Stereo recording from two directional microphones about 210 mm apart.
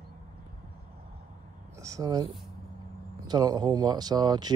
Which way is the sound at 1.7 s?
15° right (ahead or behind).